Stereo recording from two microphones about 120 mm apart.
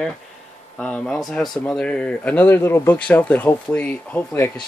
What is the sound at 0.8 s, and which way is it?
Speech, 10° left (ahead or behind).